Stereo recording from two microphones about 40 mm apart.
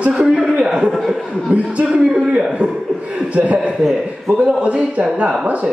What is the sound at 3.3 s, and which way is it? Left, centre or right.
Chuckle, right.